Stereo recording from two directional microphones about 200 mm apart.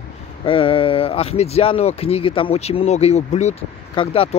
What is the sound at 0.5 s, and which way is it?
Speech, 25° left (ahead or behind).